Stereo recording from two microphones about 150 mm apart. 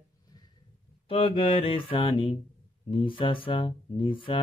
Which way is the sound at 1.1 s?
35° left (ahead or behind).